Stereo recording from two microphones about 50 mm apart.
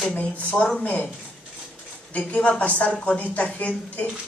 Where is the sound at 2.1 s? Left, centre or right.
Left.